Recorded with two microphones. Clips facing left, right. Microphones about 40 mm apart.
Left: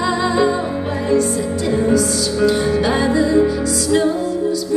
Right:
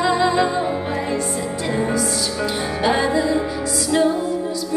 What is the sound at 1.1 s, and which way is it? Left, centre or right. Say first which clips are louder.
Music: left 6 dB; right.